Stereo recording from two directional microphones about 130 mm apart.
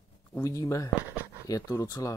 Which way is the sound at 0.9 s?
10° right (ahead or behind).